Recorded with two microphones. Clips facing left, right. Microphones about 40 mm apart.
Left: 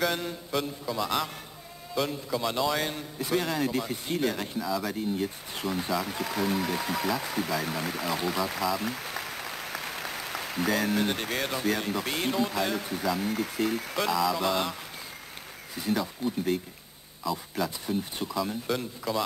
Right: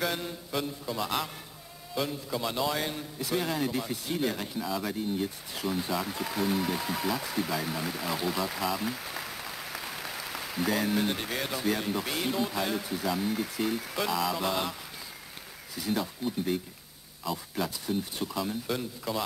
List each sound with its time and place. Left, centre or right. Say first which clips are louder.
0.5 s speech: left 2 dB; centre
2.9 s speech: left 2 dB; centre
3.3 s speech: left 2 dB; centre
5.6 s speech: left 1 dB; centre
8.6 s applause: left 2 dB; centre
10.8 s speech: left 1 dB; centre
14.1 s speech: left 3 dB; centre
14.5 s speech: left 2 dB; centre
17.2 s speech: left 2 dB; centre
17.6 s speech: left 1 dB; centre
18.3 s speech: left 3 dB; centre